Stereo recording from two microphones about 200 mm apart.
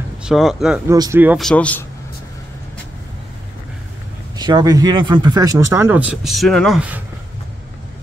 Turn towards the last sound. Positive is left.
turn(degrees=-5)  # may be behind; listen again after turning